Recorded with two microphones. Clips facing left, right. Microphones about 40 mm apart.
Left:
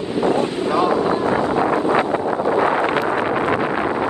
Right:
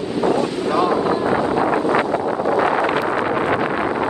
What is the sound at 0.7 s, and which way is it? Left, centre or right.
Wind noise, centre.